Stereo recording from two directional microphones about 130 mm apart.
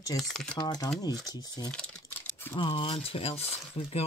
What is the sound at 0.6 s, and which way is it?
Speech, 30° left (ahead or behind).